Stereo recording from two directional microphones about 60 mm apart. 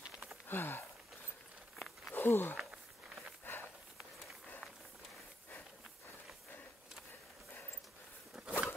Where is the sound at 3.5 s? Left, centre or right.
Left.